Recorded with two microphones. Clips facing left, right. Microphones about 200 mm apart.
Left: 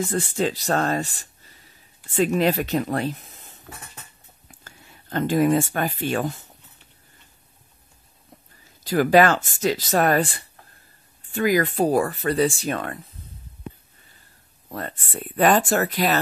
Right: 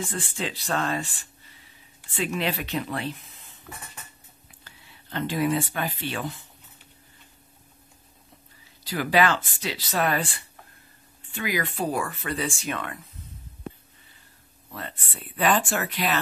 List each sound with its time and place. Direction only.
0.0 s speech: 40° left (ahead or behind)
8.8 s speech: 45° left (ahead or behind)
14.7 s speech: 45° left (ahead or behind)